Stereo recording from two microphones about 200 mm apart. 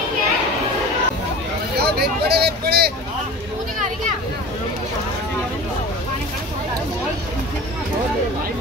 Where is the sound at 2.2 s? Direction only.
55° right (ahead or behind).